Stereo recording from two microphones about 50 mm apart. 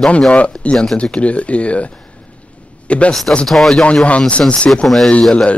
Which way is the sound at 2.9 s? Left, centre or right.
Left.